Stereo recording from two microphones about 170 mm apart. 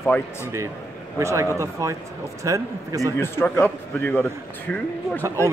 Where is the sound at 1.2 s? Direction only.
15° right (ahead or behind).